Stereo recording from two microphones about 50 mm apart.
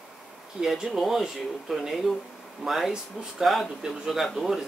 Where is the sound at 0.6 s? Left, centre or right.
Centre.